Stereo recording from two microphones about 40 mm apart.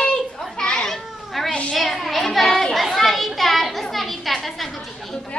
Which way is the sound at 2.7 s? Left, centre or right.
Centre.